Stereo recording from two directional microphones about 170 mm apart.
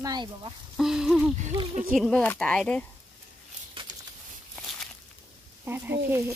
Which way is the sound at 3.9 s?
90° right.